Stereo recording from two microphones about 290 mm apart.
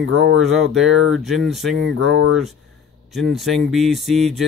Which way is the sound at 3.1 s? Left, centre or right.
Centre.